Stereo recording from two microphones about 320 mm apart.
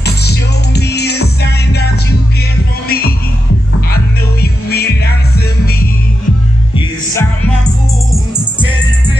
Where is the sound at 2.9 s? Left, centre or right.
Left.